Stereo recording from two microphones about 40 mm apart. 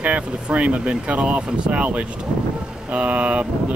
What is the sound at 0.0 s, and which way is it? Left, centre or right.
Speech, right.